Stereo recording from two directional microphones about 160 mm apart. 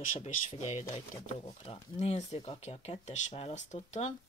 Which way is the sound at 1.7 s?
40° left (ahead or behind).